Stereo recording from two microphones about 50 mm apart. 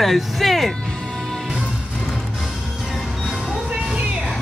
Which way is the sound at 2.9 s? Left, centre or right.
Centre.